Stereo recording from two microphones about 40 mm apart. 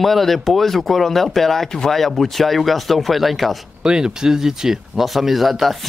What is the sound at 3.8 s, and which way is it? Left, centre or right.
Speech, centre.